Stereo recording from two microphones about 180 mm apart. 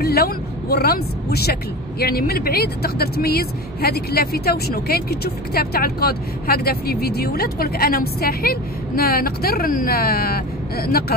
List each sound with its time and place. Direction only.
0.0 s speech: 60° left (ahead or behind)